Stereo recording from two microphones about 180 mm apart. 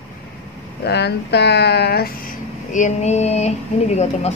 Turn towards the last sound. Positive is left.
turn(degrees=35)  # may be behind; listen again after turning